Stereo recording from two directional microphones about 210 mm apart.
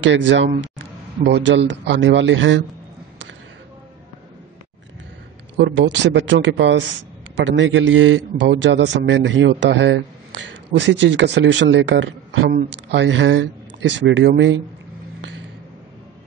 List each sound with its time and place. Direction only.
0.0 s speech: 60° right (ahead or behind)
5.6 s speech: 60° right (ahead or behind)